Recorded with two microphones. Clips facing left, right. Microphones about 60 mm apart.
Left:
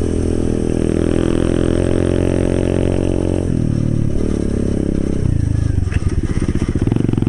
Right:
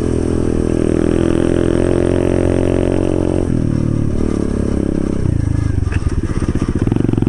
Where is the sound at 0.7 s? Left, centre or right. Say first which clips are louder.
Right 3 dB; centre.